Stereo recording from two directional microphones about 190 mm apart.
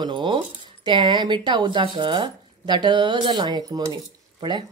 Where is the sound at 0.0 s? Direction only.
25° right (ahead or behind).